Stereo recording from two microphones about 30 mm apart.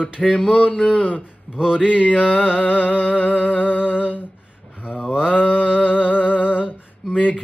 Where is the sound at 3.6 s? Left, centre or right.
Left.